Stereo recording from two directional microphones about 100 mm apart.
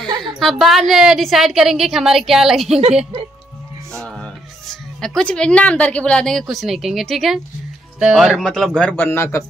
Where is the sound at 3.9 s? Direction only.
10° left (ahead or behind).